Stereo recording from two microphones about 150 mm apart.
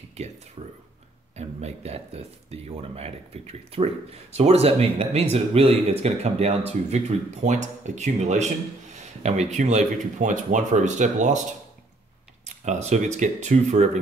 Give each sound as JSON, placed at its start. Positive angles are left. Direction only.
{"t": 0.6, "sound": "speech", "side_deg": -35}
{"t": 12.4, "sound": "speech", "side_deg": -50}